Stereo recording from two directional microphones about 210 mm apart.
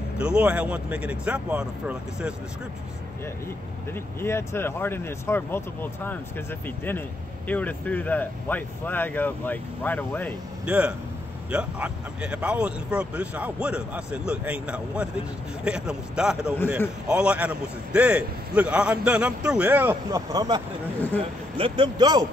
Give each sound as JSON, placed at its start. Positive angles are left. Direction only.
{"t": 0.2, "sound": "a man's voice", "side_deg": -5}
{"t": 3.9, "sound": "speech", "side_deg": 10}
{"t": 10.6, "sound": "a man's voice", "side_deg": -5}